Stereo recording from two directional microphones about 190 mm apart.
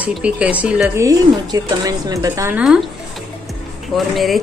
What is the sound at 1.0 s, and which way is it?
A woman's voice, 20° right (ahead or behind).